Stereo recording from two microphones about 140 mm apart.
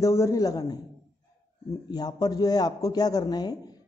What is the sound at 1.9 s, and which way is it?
A man's voice, 30° left (ahead or behind).